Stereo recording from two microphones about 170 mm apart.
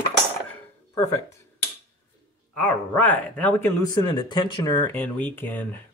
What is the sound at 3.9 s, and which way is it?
Speech, 25° left (ahead or behind).